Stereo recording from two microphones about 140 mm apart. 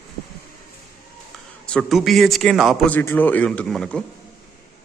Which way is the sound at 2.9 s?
15° left (ahead or behind).